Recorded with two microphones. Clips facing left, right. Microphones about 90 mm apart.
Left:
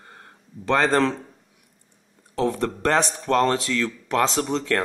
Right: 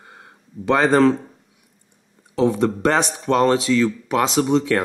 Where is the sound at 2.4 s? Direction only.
10° right (ahead or behind).